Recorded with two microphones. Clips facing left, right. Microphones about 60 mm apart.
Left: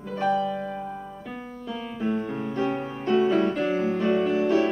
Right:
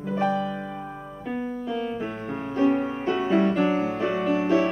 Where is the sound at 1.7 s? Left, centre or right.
Centre.